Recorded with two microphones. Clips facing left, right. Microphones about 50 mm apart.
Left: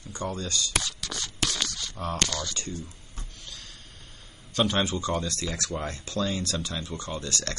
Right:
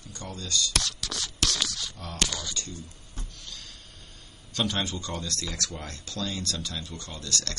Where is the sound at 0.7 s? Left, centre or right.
Centre.